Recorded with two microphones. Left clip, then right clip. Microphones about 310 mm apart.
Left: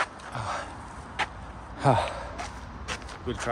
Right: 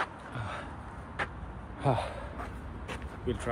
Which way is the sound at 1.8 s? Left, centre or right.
Left.